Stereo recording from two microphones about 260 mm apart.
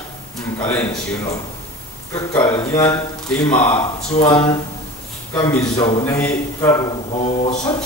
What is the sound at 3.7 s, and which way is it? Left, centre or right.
Speech, left.